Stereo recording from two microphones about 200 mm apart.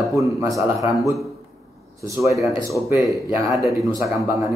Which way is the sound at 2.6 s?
15° right (ahead or behind).